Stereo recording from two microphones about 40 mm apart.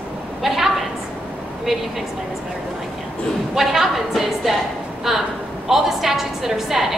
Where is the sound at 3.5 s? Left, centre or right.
Centre.